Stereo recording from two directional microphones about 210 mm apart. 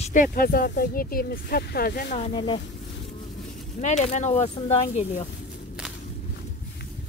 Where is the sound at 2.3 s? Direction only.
25° left (ahead or behind).